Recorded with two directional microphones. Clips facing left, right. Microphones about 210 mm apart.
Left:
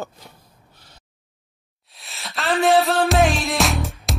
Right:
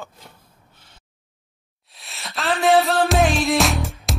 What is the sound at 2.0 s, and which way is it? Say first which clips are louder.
Music: even; centre (ahead or behind).